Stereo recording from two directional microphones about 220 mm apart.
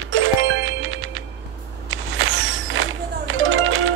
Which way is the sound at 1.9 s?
60° right (ahead or behind).